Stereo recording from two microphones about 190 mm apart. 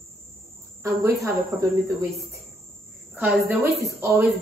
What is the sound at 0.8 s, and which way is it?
Speech, 15° right (ahead or behind).